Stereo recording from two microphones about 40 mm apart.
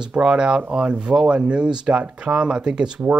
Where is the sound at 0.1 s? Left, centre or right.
Right.